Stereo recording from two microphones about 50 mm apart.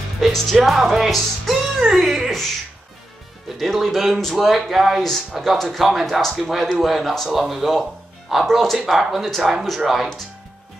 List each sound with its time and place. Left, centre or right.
0.2 s music: centre
3.5 s music: centre